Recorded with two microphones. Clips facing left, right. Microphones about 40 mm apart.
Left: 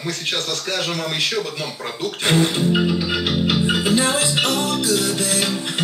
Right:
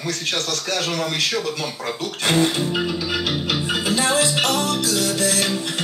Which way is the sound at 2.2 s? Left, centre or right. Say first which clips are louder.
Left 1 dB; centre.